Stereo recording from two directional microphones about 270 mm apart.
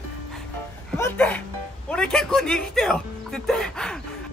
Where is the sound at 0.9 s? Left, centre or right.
Centre.